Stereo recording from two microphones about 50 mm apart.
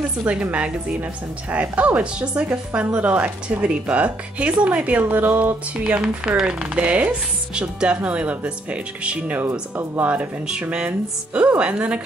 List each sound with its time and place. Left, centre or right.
0.3 s speech: right
5.9 s speech: centre
9.4 s speech: right
10.6 s speech: right